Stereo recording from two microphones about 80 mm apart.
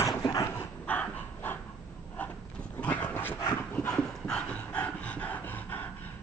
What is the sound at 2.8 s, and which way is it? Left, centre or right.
Dog, centre.